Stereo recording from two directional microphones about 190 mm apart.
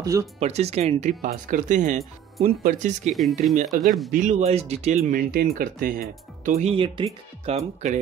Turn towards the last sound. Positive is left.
turn(degrees=-40)  # may be behind; listen again after turning